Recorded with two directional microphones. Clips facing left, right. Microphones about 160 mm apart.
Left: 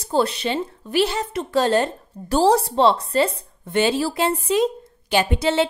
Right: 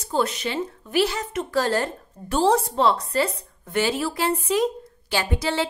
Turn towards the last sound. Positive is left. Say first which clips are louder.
# left 5 dB
turn(degrees=20)  # may be behind; listen again after turning